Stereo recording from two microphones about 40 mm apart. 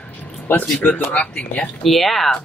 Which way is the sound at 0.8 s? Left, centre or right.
Left.